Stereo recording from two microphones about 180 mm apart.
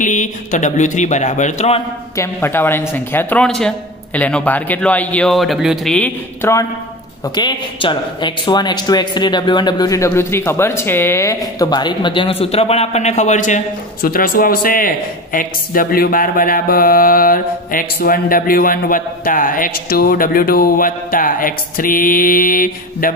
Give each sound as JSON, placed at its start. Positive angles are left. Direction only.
{"t": 0.0, "sound": "a man's voice", "side_deg": 45}
{"t": 2.1, "sound": "speech", "side_deg": 15}
{"t": 5.9, "sound": "speech", "side_deg": 10}
{"t": 7.3, "sound": "a man's voice", "side_deg": 25}
{"t": 14.0, "sound": "a man's voice", "side_deg": 55}